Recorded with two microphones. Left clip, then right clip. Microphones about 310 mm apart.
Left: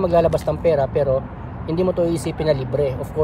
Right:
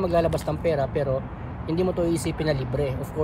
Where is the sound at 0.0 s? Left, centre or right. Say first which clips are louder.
Left 6 dB; centre.